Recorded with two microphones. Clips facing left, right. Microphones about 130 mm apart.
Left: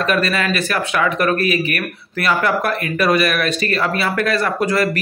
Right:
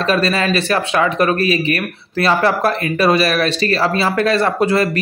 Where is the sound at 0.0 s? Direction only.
30° right (ahead or behind).